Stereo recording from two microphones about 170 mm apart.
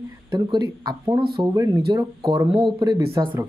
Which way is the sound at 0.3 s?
25° right (ahead or behind).